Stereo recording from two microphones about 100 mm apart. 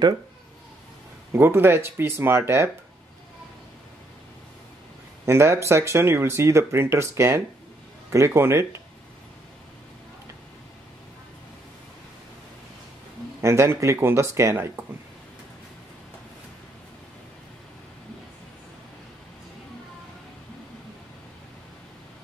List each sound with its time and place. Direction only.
1.3 s speech: 20° right (ahead or behind)
5.2 s speech: 25° right (ahead or behind)
13.4 s speech: 30° right (ahead or behind)